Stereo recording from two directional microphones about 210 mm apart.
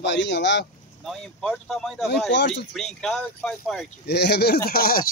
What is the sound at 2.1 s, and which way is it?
Speech, 55° left (ahead or behind).